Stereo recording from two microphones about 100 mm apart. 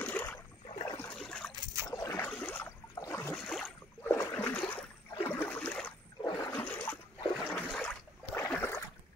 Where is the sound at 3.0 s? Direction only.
25° left (ahead or behind).